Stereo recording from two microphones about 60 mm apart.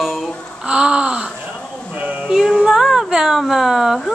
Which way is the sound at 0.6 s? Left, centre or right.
Centre.